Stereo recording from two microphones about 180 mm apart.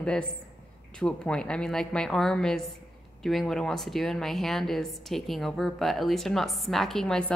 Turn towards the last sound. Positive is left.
turn(degrees=0)  # may be behind; listen again after turning